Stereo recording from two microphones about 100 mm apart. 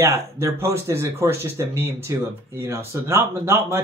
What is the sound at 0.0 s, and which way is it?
Speech, 30° right (ahead or behind).